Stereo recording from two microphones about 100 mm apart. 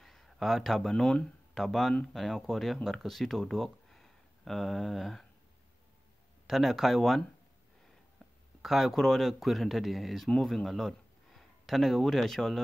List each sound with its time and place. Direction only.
0.0 s speech: centre (ahead or behind)
6.4 s speech: centre (ahead or behind)
8.6 s speech: centre (ahead or behind)